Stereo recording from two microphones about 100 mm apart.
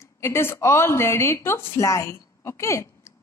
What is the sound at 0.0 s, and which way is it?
Speech, 25° left (ahead or behind).